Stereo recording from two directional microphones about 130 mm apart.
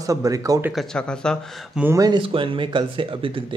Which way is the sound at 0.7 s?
5° left (ahead or behind).